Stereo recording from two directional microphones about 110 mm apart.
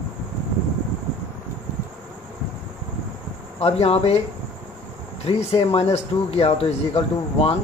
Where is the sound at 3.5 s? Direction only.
70° left (ahead or behind).